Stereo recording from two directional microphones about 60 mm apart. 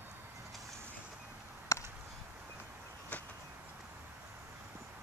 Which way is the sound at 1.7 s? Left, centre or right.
Left.